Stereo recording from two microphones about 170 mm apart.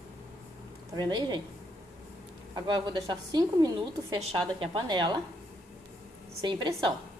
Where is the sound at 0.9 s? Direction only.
25° right (ahead or behind).